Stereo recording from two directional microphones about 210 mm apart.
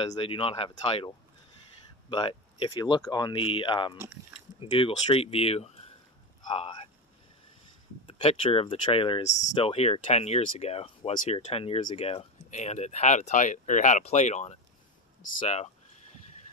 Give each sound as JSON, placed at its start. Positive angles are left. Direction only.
{"t": 0.0, "sound": "speech", "side_deg": 25}
{"t": 8.1, "sound": "speech", "side_deg": 25}